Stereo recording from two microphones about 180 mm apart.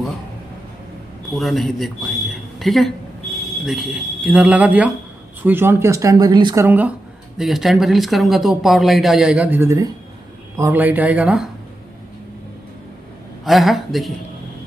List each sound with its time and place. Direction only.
1.3 s speech: centre (ahead or behind)
7.3 s speech: centre (ahead or behind)
13.5 s speech: centre (ahead or behind)